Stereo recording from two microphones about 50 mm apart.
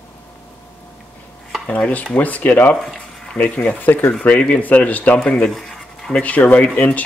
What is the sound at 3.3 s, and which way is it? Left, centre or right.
Speech, left.